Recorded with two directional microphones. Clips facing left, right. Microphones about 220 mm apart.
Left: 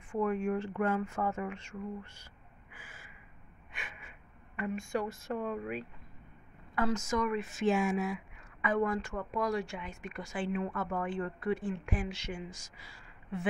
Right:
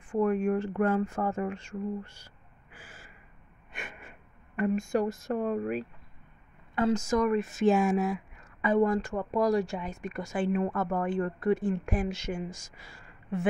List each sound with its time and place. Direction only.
0.1 s speech: 40° right (ahead or behind)
2.8 s owl: 35° right (ahead or behind)
3.7 s gasp: 45° right (ahead or behind)
4.6 s speech: 40° right (ahead or behind)
6.7 s speech: 30° right (ahead or behind); by 13.5 s 50° right (ahead or behind)